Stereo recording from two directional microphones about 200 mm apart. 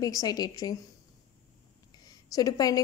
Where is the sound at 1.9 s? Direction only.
20° left (ahead or behind).